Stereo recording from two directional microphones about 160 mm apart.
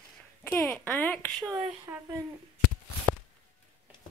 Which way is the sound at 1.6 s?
10° right (ahead or behind).